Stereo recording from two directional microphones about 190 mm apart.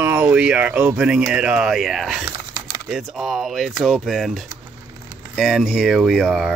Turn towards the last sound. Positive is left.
turn(degrees=0)  # may be behind; listen again after turning